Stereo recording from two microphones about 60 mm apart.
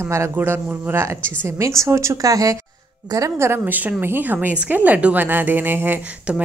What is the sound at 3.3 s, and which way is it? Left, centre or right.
A woman's voice, right.